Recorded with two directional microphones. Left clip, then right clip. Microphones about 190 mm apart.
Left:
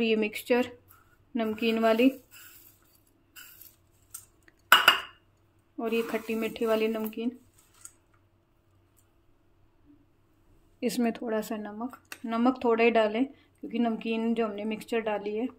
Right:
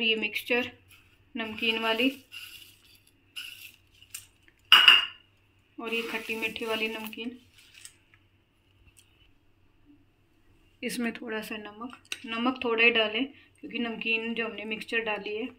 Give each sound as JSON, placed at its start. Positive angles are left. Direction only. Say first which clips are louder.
{"t": 0.0, "sound": "speech", "louder": "even", "side_deg": 65}
{"t": 5.8, "sound": "speech", "louder": "left 2 dB", "side_deg": 60}
{"t": 10.8, "sound": "speech", "louder": "left 4 dB", "side_deg": 40}